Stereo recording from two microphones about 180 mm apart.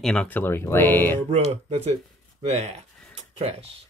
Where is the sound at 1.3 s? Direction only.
35° right (ahead or behind).